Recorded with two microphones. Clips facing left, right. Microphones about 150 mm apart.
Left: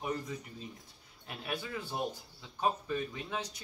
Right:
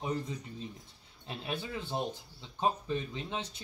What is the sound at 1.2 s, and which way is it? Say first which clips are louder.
Speech: right 1 dB; 25° right (ahead or behind).